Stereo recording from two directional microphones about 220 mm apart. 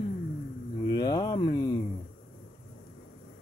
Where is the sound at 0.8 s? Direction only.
20° left (ahead or behind).